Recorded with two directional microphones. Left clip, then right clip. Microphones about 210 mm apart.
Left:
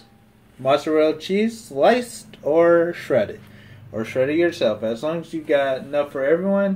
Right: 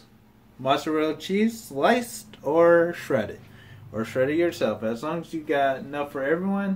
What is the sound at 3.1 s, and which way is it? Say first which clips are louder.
Speech: left 9 dB; 20° right (ahead or behind).